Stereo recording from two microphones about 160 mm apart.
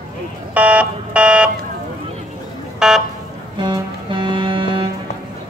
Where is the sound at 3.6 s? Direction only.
30° right (ahead or behind).